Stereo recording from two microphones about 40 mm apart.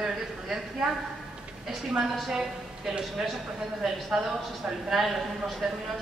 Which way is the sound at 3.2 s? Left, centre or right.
Centre.